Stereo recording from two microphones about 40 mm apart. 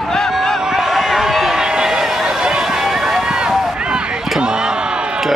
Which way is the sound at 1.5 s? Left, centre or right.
Centre.